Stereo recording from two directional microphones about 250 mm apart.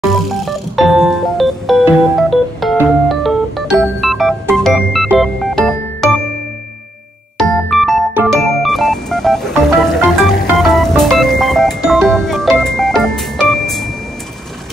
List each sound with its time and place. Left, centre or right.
0.1 s music: centre
7.3 s music: centre